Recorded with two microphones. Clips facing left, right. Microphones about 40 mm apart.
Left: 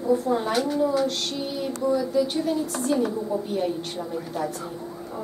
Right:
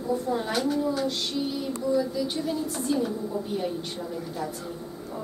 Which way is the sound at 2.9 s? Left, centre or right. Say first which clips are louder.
Left 3 dB; left.